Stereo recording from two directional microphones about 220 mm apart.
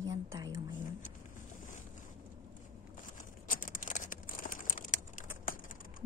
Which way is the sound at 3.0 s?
35° left (ahead or behind).